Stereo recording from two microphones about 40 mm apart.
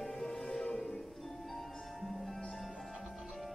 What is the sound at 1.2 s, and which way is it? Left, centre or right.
Music, centre.